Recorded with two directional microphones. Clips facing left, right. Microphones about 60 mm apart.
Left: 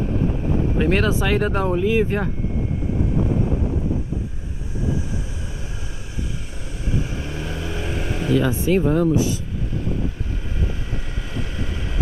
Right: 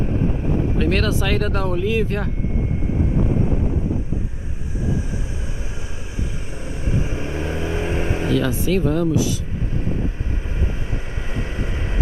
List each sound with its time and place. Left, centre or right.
0.7 s speech: centre
6.7 s vehicle: right
8.5 s speech: centre
11.3 s vehicle: right